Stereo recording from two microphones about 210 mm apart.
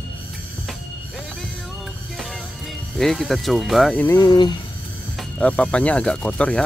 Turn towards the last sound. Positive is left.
turn(degrees=5)  # may be behind; listen again after turning